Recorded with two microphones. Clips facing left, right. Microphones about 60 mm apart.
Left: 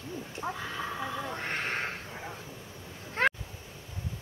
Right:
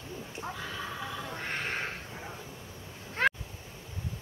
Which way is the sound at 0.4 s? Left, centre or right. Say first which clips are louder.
Left 3 dB; left.